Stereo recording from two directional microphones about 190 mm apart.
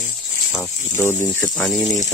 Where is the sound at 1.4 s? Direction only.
Centre (ahead or behind).